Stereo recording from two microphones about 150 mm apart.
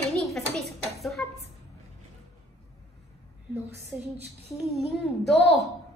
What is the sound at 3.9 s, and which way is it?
A woman's voice, 5° right (ahead or behind).